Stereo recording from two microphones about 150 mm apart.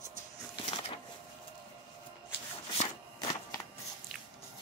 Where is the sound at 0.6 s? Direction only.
40° left (ahead or behind).